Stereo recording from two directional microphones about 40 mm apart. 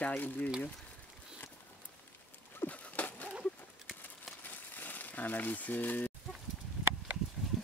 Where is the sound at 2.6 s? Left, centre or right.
Left.